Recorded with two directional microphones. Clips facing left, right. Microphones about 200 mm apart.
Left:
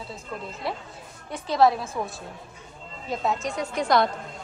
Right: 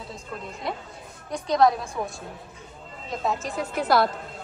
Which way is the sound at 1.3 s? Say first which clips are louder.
Even; 5° left (ahead or behind).